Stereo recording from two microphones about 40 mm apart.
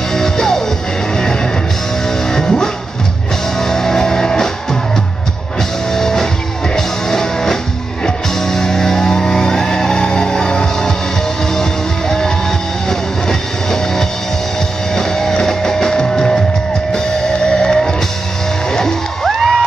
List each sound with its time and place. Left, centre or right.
0.1 s music: centre
5.9 s music: centre
19.2 s music: centre